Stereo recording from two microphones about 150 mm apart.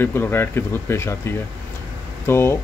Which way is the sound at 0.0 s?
15° left (ahead or behind).